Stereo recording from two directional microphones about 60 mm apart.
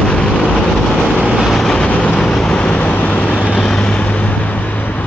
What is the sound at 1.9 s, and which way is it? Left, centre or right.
Vehicle, left.